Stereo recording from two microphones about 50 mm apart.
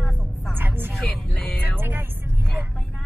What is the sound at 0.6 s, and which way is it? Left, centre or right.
Vehicle, right.